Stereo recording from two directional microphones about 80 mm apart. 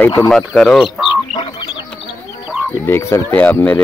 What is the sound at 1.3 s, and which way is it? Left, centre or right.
Chicken, left.